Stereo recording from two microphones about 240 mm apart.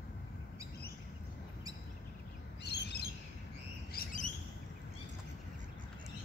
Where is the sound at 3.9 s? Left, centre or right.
Left.